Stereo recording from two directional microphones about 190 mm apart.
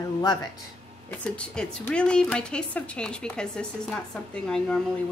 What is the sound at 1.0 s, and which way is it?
Speech, 5° left (ahead or behind).